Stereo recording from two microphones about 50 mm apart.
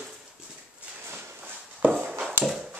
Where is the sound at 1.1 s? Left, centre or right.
Right.